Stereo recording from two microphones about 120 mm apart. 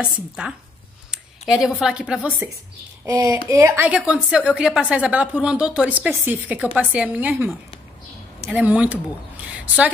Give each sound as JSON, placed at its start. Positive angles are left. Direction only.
{"t": 0.0, "sound": "a woman's voice", "side_deg": -5}
{"t": 3.1, "sound": "speech", "side_deg": -30}
{"t": 3.9, "sound": "a woman's voice", "side_deg": -5}